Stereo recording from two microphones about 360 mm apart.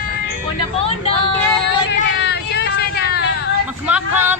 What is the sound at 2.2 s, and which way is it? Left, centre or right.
Vehicle, left.